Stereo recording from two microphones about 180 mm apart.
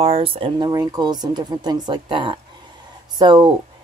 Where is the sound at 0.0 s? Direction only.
30° right (ahead or behind).